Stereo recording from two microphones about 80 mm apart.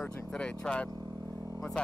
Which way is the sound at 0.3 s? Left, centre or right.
Centre.